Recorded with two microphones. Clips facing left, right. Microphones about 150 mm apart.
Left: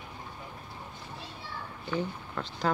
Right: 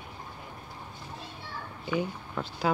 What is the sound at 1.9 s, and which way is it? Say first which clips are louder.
Speech: right 2 dB; 10° right (ahead or behind).